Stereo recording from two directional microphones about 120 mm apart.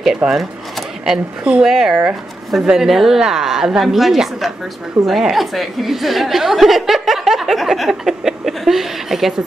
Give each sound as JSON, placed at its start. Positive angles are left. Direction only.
{"t": 0.0, "sound": "a woman's voice", "side_deg": 0}